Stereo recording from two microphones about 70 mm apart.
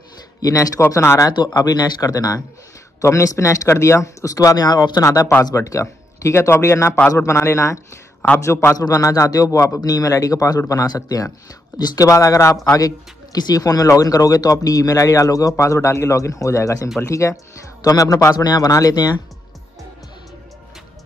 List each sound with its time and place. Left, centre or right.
0.4 s speech: left
0.7 s speech: left
1.3 s speech: left
3.0 s speech: left
5.4 s a man's voice: left
8.7 s speech: left
11.8 s speech: left
12.1 s speech: left
12.7 s speech: left
18.3 s speech: left
18.7 s speech: left